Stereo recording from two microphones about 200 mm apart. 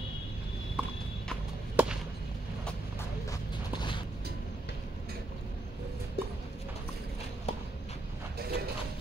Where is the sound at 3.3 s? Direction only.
20° left (ahead or behind).